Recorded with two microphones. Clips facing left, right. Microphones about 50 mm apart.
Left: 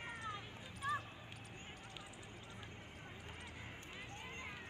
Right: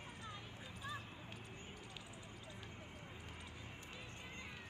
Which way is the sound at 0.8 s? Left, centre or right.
Left.